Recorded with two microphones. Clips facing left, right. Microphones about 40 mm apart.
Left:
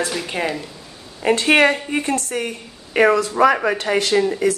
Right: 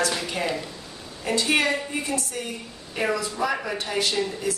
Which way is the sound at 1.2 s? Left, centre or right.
Left.